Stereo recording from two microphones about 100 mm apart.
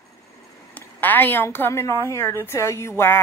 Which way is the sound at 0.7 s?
20° left (ahead or behind).